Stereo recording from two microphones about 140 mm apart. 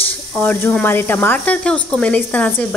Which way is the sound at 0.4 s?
15° left (ahead or behind).